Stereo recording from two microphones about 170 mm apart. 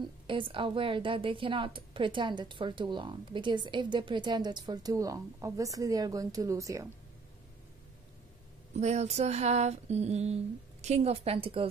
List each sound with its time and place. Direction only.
0.0 s speech: 30° right (ahead or behind)
8.7 s female singing: 40° right (ahead or behind)